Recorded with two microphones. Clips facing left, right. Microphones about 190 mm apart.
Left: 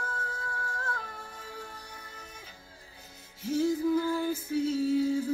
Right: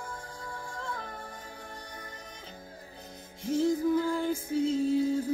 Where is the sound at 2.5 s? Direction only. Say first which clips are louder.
Right 7 dB; 50° right (ahead or behind).